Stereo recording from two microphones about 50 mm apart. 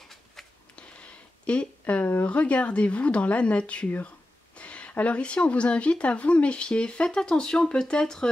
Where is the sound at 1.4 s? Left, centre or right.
Left.